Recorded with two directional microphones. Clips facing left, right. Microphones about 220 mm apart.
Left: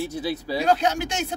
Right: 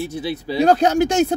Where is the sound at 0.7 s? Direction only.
45° right (ahead or behind).